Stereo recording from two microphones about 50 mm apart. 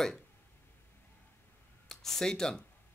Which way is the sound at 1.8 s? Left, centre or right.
Centre.